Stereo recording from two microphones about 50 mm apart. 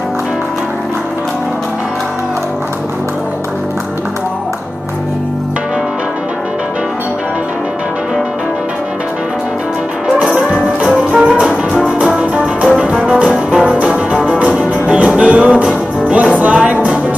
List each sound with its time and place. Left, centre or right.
10.8 s music: right